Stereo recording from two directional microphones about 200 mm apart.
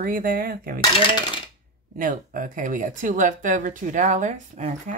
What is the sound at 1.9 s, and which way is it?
Speech, 40° right (ahead or behind).